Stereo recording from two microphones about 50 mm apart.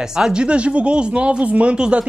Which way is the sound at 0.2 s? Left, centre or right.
Centre.